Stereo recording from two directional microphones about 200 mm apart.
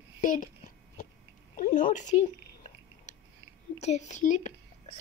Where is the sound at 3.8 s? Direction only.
35° left (ahead or behind).